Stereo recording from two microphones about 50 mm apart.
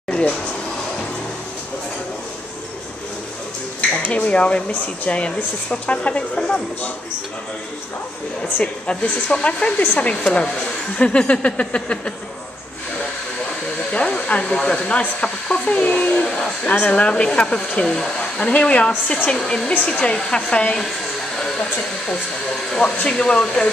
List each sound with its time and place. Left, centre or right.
4.3 s speech: left
8.4 s speech: left
13.9 s speech: left
15.8 s speech: left
17.0 s speech: centre
18.5 s speech: left
22.7 s speech: centre